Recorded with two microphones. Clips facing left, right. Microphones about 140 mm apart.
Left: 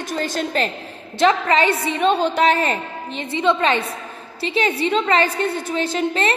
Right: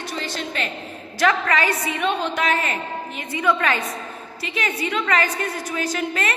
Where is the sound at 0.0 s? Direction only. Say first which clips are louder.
Left 5 dB; 45° left (ahead or behind).